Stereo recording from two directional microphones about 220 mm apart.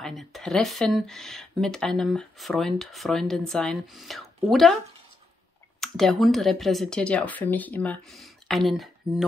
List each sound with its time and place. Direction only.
0.0 s speech: centre (ahead or behind)
5.8 s speech: centre (ahead or behind)